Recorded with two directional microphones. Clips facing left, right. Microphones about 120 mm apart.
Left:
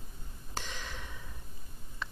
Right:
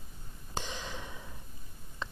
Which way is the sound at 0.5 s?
20° right (ahead or behind).